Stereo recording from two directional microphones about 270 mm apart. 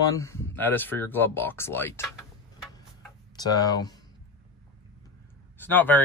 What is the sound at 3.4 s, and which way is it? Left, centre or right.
Speech, centre.